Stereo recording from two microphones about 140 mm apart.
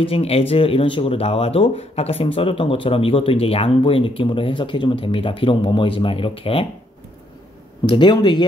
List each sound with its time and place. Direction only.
0.0 s speech: 45° left (ahead or behind)
7.8 s speech: 35° left (ahead or behind)